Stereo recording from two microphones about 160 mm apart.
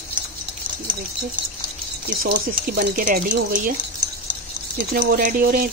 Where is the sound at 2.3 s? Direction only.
65° right (ahead or behind).